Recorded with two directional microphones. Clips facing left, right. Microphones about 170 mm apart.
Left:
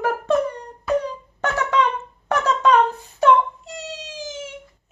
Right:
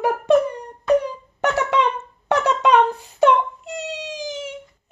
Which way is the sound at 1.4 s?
15° right (ahead or behind).